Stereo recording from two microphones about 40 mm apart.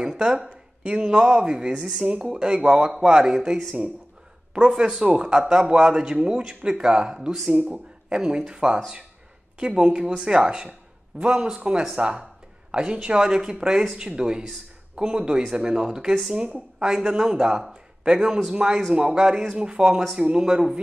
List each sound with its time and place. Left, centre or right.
0.0 s speech: centre
2.0 s speech: right
2.3 s speech: centre
4.6 s speech: centre
16.3 s speech: right
16.8 s speech: centre